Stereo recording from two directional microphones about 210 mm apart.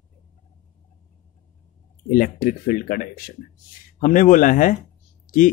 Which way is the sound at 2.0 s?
40° left (ahead or behind).